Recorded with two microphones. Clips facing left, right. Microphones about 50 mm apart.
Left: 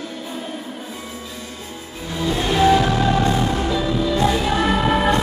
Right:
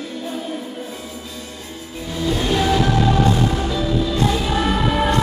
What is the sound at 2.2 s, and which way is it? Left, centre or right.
Music, centre.